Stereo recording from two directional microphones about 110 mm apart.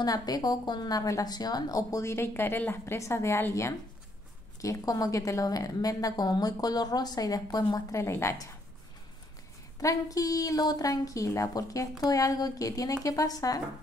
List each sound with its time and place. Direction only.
0.0 s a woman's voice: 35° left (ahead or behind)
9.8 s a woman's voice: 30° left (ahead or behind)